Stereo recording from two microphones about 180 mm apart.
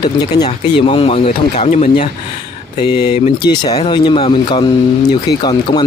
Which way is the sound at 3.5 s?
25° left (ahead or behind).